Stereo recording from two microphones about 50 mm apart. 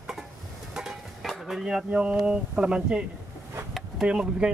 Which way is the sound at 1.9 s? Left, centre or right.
Right.